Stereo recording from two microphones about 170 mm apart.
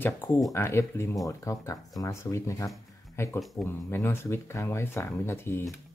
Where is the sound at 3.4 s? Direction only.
Centre (ahead or behind).